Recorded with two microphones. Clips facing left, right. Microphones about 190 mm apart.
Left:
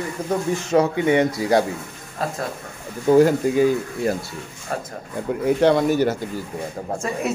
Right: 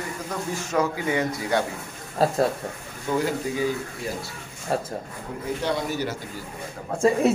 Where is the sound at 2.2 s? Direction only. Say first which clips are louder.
Right 5 dB; 30° right (ahead or behind).